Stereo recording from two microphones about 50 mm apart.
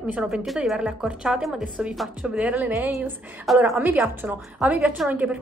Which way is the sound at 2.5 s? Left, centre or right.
Right.